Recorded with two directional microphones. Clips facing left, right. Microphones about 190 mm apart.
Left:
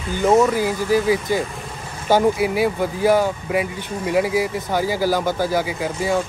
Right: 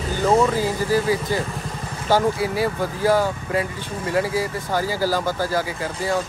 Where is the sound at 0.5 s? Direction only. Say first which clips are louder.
Left 2 dB; 15° left (ahead or behind).